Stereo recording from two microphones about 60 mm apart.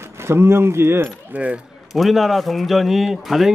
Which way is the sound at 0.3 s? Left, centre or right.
Right.